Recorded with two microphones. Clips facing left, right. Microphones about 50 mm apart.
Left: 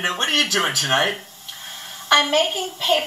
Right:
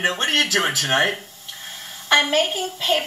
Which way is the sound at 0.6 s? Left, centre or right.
Centre.